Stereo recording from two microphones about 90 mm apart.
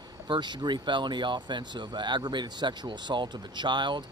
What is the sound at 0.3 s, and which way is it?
Speech, 55° right (ahead or behind).